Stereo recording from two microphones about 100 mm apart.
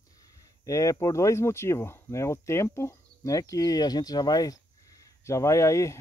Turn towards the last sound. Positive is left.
turn(degrees=30)  # may be behind; listen again after turning